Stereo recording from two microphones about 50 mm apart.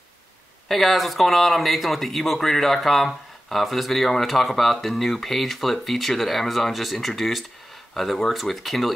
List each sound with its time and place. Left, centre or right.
0.7 s speech: centre